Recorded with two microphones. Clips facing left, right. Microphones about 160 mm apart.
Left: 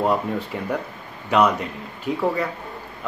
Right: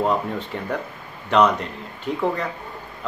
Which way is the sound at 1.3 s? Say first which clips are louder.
Right 1 dB; 5° left (ahead or behind).